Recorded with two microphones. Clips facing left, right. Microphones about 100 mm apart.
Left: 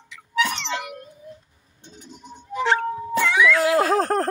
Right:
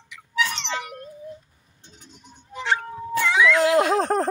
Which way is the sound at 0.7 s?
45° right (ahead or behind).